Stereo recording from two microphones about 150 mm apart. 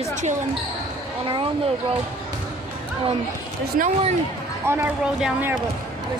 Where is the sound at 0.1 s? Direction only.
55° right (ahead or behind).